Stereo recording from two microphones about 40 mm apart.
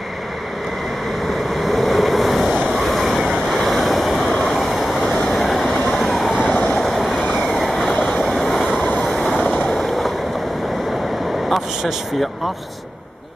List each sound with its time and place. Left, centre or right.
1.5 s vehicle: centre
2.7 s waves: centre
4.4 s vehicle: centre
5.3 s train: centre
6.4 s vehicle: left
6.8 s vehicle: centre
9.1 s train: centre
9.4 s vehicle: left
9.8 s boat: centre